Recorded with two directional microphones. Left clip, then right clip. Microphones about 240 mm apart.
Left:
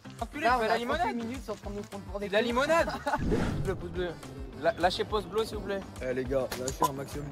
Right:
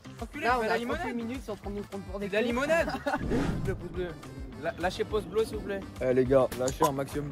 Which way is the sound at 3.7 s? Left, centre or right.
Centre.